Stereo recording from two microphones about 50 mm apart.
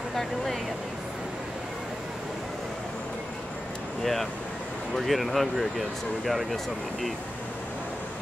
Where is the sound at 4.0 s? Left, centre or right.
Centre.